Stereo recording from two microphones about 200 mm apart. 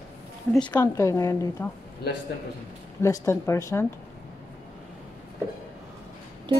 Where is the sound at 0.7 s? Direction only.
15° left (ahead or behind).